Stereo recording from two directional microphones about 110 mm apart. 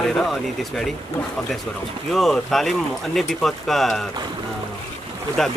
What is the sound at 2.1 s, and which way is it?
Speech, centre (ahead or behind).